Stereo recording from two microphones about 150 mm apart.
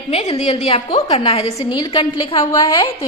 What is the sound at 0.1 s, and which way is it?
A woman's voice, 45° left (ahead or behind).